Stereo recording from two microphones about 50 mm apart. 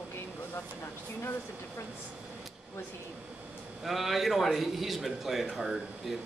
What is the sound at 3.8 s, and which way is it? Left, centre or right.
A man's voice, centre.